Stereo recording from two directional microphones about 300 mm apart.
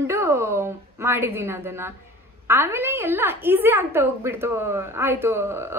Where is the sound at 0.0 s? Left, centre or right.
Centre.